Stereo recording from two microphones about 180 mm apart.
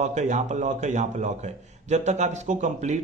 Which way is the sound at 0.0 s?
40° right (ahead or behind).